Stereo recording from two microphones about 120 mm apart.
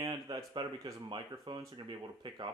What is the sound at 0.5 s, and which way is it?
Speech, 30° right (ahead or behind).